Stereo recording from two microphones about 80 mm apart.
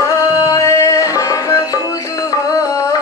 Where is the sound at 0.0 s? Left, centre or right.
Left.